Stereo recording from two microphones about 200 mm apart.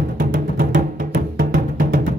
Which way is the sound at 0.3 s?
40° right (ahead or behind).